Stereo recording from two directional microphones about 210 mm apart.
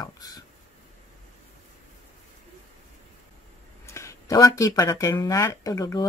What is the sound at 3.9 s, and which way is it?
Speech, 15° left (ahead or behind).